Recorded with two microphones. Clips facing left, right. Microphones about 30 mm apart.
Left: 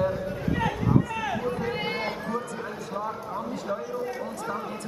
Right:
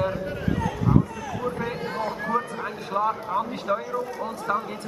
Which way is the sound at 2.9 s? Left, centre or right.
Right.